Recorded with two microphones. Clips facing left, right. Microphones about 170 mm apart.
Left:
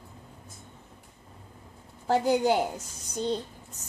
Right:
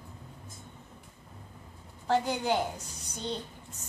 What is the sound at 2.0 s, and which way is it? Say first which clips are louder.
Speech: left 5 dB; 35° left (ahead or behind).